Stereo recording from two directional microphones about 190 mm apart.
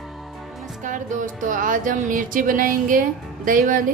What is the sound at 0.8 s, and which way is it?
A woman's voice, 40° right (ahead or behind).